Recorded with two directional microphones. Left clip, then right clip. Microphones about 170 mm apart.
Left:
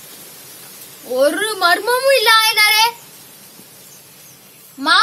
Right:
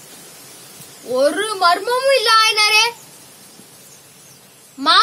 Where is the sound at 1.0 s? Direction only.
Centre (ahead or behind).